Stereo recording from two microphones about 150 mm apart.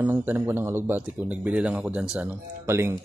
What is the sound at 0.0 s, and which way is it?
Speech, 10° right (ahead or behind).